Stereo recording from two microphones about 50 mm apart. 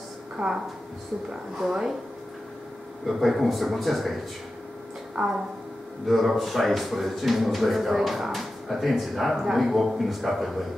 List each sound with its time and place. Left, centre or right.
0.4 s a woman's voice: right
1.3 s speech: centre
3.1 s speech: centre